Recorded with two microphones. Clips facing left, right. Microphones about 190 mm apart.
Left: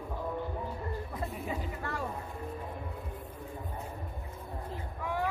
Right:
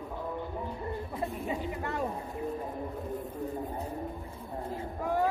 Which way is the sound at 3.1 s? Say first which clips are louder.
Right 8 dB; 45° right (ahead or behind).